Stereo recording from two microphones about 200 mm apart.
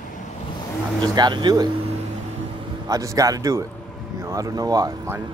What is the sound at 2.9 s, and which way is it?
Speech, 15° right (ahead or behind).